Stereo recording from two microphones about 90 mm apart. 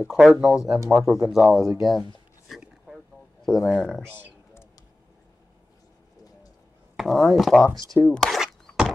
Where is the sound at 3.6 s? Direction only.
10° left (ahead or behind).